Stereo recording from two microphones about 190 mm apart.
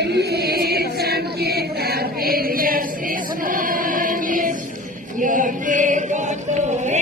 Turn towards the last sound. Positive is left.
turn(degrees=-40)  # may be behind; listen again after turning